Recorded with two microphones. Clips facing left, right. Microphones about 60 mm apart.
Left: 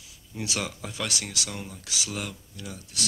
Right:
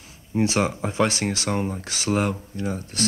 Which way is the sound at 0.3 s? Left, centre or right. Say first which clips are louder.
Right 11 dB; right.